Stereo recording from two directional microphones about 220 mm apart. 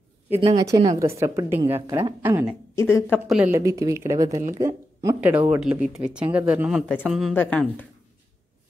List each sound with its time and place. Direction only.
0.4 s speech: 15° right (ahead or behind)
2.7 s speech: 10° left (ahead or behind)
3.5 s speech: 15° right (ahead or behind); by 7.8 s 5° left (ahead or behind)